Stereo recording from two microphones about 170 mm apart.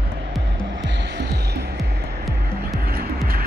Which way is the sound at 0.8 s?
90° right.